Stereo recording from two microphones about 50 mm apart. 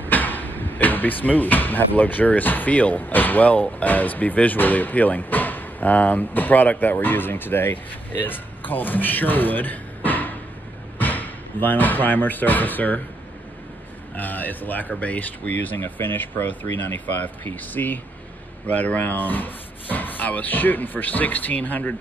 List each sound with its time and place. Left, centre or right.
0.0 s speech: left
14.1 s speech: left